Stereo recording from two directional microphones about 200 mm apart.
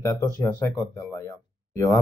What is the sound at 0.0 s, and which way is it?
Speech, 15° left (ahead or behind).